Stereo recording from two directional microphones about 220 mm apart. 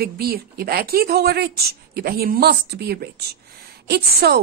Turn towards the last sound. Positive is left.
turn(degrees=-45)  # may be behind; listen again after turning